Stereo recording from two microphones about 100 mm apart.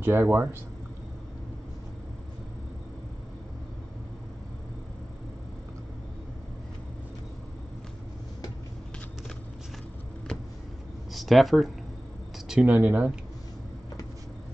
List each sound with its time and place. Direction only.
0.0 s speech: 20° right (ahead or behind)
11.1 s speech: centre (ahead or behind)
12.4 s speech: 15° right (ahead or behind)